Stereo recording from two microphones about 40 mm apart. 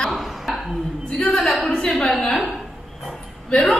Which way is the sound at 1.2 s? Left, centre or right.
Centre.